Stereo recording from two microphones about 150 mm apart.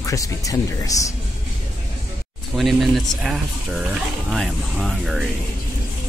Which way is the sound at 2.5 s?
5° right (ahead or behind).